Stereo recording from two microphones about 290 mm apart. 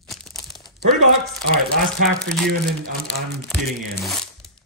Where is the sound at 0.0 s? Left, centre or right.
Centre.